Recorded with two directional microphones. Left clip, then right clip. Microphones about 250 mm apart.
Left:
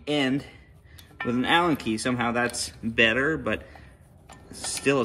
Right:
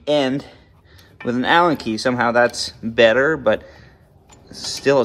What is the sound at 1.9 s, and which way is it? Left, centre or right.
Speech, right.